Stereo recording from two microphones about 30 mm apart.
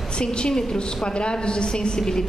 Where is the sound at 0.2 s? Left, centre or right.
Left.